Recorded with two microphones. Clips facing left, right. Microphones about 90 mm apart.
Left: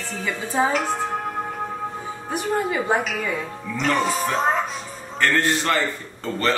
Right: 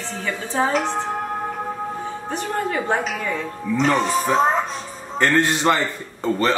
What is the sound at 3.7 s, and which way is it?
Speech, 25° right (ahead or behind).